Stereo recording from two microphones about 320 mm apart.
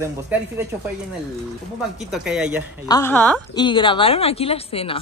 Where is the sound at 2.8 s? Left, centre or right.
Centre.